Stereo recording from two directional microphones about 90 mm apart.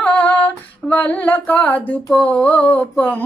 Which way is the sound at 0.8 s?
15° left (ahead or behind).